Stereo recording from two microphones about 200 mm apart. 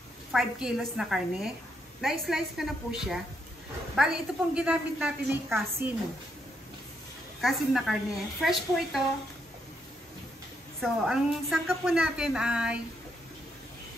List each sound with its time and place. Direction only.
0.3 s a woman's voice: centre (ahead or behind)
7.4 s a woman's voice: centre (ahead or behind)
10.8 s a woman's voice: centre (ahead or behind)